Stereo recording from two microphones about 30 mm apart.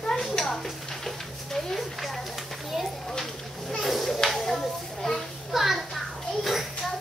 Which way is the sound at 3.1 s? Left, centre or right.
Centre.